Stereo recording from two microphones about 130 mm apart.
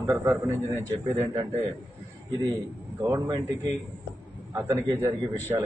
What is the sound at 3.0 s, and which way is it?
A man's voice, 25° right (ahead or behind).